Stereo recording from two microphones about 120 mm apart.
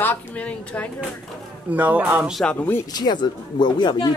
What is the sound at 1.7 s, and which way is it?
Speech, 15° right (ahead or behind).